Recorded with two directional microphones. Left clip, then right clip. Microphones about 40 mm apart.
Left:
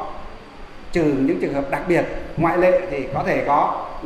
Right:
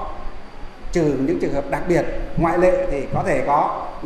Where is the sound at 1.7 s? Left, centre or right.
Right.